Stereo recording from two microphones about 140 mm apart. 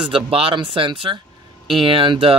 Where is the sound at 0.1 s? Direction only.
40° right (ahead or behind).